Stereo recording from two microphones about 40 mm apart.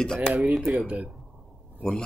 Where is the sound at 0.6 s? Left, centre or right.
Centre.